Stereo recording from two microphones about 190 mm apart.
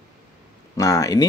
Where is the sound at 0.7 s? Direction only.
20° left (ahead or behind).